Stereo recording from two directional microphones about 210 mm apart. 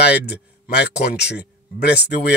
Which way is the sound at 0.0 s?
50° left (ahead or behind).